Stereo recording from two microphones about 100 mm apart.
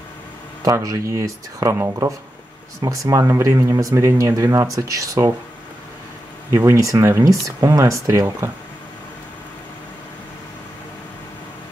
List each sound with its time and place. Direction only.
0.6 s speech: 35° right (ahead or behind)
6.5 s speech: 30° right (ahead or behind)